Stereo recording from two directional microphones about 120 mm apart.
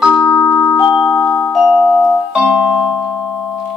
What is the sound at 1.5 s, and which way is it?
Music, 5° left (ahead or behind).